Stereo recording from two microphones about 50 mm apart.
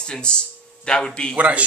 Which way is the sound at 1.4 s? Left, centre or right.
Right.